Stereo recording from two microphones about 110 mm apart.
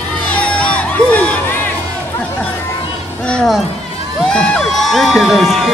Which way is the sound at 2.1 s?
15° left (ahead or behind).